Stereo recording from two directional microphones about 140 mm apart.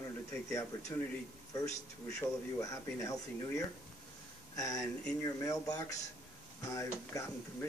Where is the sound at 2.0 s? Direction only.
20° left (ahead or behind).